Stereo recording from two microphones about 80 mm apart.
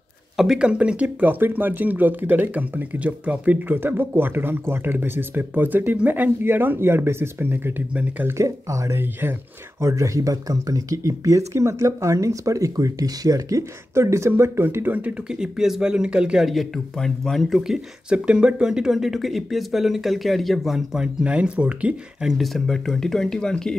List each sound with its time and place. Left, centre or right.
0.4 s speech: centre
8.3 s speech: right
9.0 s speech: right
9.8 s speech: right
15.2 s speech: centre
18.1 s speech: centre